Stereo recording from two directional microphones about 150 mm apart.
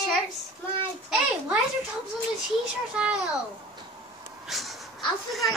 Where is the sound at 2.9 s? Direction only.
5° right (ahead or behind).